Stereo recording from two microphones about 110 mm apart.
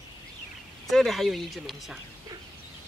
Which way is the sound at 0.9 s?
Centre (ahead or behind).